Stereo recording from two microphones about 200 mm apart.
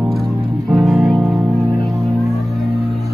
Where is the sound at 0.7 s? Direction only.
Centre (ahead or behind).